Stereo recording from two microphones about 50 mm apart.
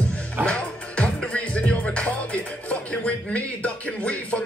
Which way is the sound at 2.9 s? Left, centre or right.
Left.